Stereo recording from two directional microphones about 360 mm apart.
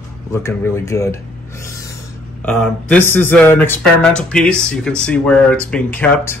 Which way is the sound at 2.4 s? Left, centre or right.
Centre.